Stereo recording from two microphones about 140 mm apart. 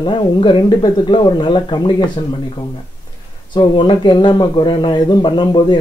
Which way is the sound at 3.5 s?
35° left (ahead or behind).